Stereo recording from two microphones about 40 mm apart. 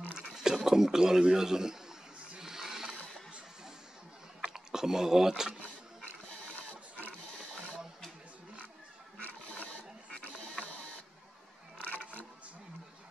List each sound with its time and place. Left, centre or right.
0.1 s a sound: centre
0.7 s a man's voice: centre
2.3 s printer: centre
4.5 s a sound: centre
10.6 s printer: left
11.9 s music: right